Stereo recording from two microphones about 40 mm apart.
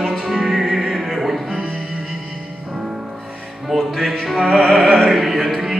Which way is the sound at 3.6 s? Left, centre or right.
Centre.